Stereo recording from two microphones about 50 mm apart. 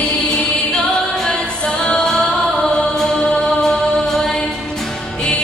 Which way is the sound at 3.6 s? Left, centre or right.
Centre.